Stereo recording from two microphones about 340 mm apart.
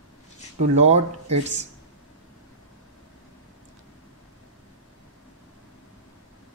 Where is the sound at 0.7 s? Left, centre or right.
Centre.